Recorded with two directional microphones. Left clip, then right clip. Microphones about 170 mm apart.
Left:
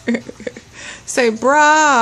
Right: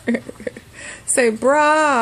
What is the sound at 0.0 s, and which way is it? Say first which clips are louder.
Speech: left 1 dB; 10° left (ahead or behind).